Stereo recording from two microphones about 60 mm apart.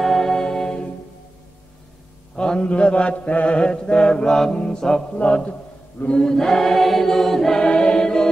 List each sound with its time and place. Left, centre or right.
0.0 s music: centre
2.3 s mantra: centre
7.6 s choir: centre